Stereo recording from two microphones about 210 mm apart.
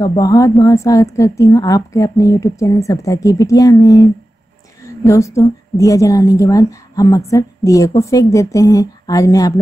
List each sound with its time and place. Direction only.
0.0 s a woman's voice: 15° left (ahead or behind)